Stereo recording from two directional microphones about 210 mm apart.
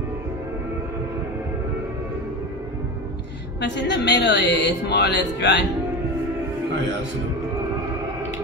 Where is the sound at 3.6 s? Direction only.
55° left (ahead or behind).